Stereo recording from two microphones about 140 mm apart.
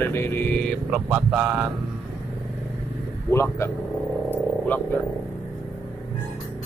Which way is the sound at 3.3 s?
15° left (ahead or behind).